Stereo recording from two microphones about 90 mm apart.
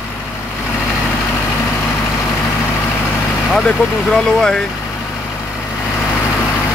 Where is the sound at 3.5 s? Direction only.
10° left (ahead or behind).